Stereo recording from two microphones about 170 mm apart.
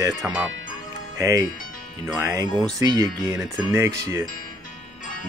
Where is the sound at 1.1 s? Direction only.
20° right (ahead or behind).